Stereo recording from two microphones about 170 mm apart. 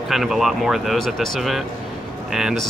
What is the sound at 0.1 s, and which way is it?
Speech, centre (ahead or behind).